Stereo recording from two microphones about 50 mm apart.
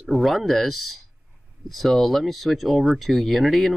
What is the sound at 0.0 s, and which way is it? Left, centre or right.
Speech, centre.